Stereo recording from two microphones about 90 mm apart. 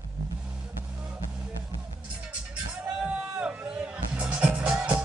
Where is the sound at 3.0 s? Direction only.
10° right (ahead or behind).